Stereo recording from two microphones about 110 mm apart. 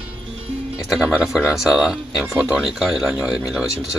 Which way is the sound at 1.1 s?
10° right (ahead or behind).